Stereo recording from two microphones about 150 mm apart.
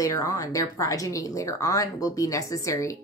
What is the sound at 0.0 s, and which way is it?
A woman's voice, 20° left (ahead or behind).